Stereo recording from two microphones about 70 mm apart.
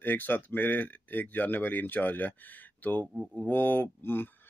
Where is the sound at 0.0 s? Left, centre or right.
Left.